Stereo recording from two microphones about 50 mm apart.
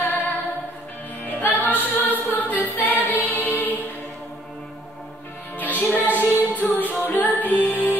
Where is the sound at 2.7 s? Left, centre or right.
Left.